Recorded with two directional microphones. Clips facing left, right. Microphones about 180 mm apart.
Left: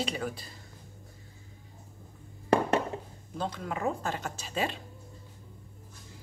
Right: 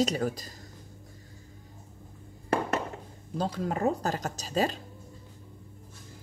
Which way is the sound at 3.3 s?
35° right (ahead or behind).